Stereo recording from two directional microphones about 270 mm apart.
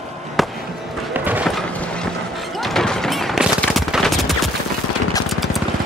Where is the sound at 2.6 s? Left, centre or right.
Centre.